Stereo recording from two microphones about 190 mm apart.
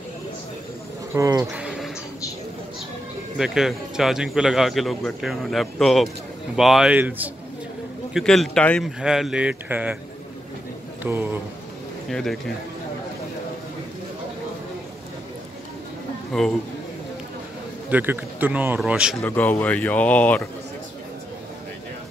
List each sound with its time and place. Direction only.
1.1 s speech: 15° right (ahead or behind)
1.6 s a sound: 5° right (ahead or behind)
3.3 s speech: centre (ahead or behind)
8.1 s speech: centre (ahead or behind)
11.0 s speech: 10° right (ahead or behind)
12.1 s speech: centre (ahead or behind)
16.3 s speech: centre (ahead or behind)
17.8 s speech: 10° right (ahead or behind)
19.2 s speech: 10° left (ahead or behind)